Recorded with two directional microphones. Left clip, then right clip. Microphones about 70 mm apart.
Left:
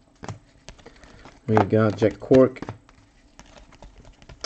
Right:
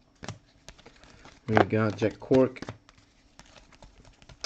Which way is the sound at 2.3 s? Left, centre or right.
Centre.